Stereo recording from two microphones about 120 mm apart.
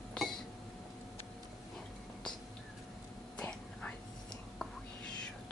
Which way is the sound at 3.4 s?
10° left (ahead or behind).